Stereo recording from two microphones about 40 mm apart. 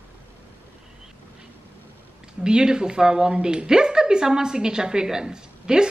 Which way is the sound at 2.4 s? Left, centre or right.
Centre.